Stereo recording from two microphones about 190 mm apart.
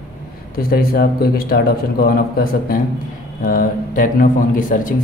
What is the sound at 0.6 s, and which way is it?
Speech, 50° left (ahead or behind).